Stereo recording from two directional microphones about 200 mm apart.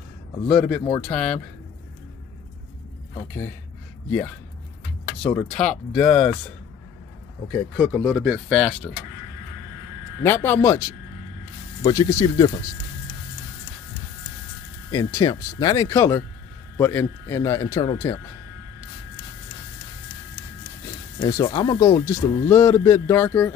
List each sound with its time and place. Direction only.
0.5 s speech: centre (ahead or behind)
5.2 s speech: 5° left (ahead or behind)
7.4 s speech: 5° left (ahead or behind)
10.2 s a man's voice: 10° left (ahead or behind)
11.8 s a man's voice: 15° left (ahead or behind)
14.9 s a man's voice: 15° left (ahead or behind)
21.3 s a man's voice: 20° left (ahead or behind)